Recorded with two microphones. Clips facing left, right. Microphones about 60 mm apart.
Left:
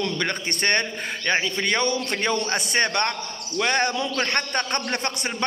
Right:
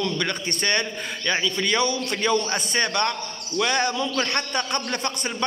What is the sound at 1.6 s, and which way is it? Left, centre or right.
A man's voice, left.